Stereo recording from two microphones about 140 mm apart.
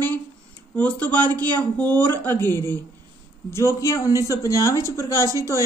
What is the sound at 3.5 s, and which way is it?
Speech, 20° left (ahead or behind).